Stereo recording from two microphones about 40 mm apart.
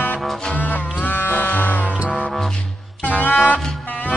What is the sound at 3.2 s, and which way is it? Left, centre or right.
Music, left.